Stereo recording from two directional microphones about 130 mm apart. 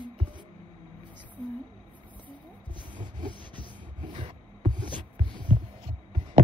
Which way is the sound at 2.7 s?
35° right (ahead or behind).